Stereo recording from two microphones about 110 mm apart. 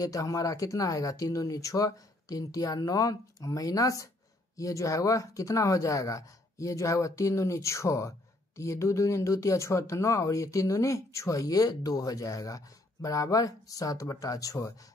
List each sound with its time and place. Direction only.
0.0 s speech: 30° left (ahead or behind)